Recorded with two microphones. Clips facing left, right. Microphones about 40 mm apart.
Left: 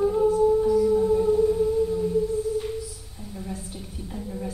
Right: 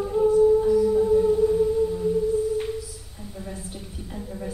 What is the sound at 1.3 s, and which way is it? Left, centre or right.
Music, right.